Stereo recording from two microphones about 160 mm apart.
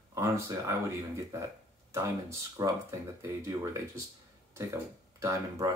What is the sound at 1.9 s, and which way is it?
Speech, 20° right (ahead or behind).